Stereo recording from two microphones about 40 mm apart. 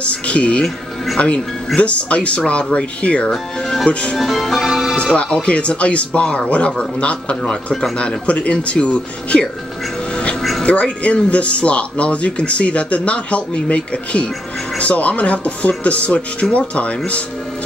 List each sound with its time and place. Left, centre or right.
0.0 s speech: left
3.6 s speech: centre
3.9 s speech: left
4.2 s music: centre
4.9 s speech: left
7.4 s speech: centre
8.3 s speech: left
10.6 s speech: left